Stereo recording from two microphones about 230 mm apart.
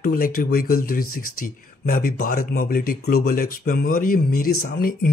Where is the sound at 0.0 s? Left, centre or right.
Left.